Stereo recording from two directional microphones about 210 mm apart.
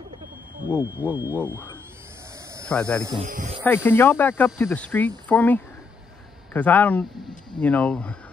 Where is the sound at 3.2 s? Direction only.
40° right (ahead or behind).